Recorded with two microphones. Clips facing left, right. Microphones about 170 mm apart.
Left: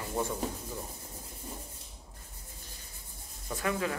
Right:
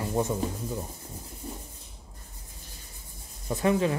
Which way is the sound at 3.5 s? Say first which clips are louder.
Right 7 dB; 25° right (ahead or behind).